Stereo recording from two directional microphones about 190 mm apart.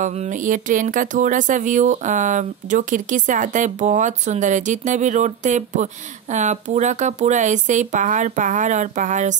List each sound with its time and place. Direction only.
0.0 s speech: 40° right (ahead or behind)